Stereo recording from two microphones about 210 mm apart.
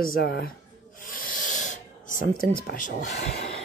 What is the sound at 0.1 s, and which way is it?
Speech, 50° left (ahead or behind).